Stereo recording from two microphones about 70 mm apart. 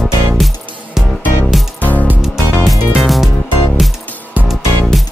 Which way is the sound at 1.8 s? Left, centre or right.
Left.